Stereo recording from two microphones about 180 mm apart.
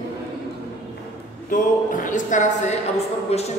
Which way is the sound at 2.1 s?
45° left (ahead or behind).